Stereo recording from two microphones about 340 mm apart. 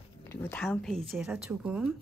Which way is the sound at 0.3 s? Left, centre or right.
Centre.